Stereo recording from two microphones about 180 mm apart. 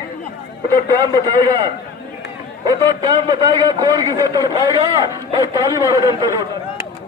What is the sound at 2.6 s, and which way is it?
A man's voice, 25° right (ahead or behind).